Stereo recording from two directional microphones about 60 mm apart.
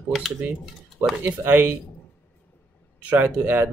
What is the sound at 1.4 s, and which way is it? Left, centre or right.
Speech, right.